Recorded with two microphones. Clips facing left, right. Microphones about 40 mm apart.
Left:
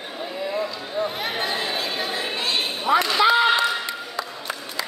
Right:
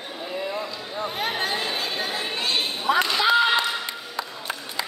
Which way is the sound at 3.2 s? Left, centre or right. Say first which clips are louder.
Left 3 dB; centre.